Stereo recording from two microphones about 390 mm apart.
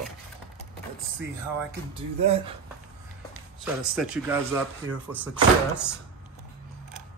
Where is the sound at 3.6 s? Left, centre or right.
Centre.